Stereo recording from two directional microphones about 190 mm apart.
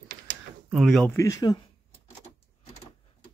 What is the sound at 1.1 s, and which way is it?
Speech, 15° left (ahead or behind).